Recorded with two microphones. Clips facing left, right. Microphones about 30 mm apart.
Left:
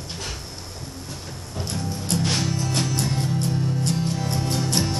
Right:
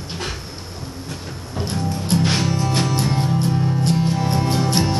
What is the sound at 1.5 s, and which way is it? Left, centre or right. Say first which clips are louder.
Music: right 5 dB; right.